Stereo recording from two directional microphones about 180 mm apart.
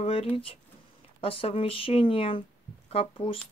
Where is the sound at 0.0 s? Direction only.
35° left (ahead or behind).